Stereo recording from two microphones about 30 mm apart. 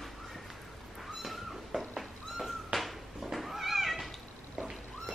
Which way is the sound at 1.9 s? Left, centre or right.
Centre.